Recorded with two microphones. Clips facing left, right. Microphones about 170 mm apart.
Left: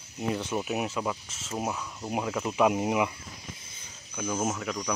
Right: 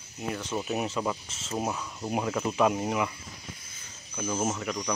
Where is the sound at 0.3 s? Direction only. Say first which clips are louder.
Left 1 dB; 15° left (ahead or behind).